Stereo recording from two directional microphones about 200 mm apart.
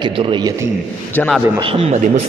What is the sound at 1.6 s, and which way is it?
Speech, 30° right (ahead or behind).